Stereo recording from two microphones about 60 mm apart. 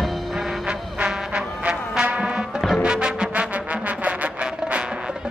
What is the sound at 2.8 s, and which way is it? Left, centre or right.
Music, centre.